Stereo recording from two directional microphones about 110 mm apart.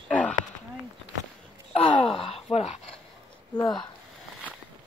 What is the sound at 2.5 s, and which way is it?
Speech, 75° left (ahead or behind).